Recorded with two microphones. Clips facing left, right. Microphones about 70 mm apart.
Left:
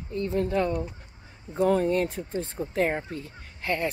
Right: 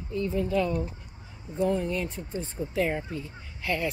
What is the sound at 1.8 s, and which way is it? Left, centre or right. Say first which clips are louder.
Speech: left 6 dB; left.